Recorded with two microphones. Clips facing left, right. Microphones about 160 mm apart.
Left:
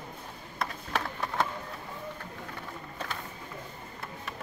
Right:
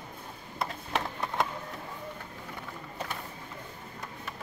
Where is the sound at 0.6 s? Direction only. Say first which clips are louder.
Even; 20° right (ahead or behind).